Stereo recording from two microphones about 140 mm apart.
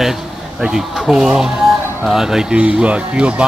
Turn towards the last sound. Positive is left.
turn(degrees=-10)  # may be behind; listen again after turning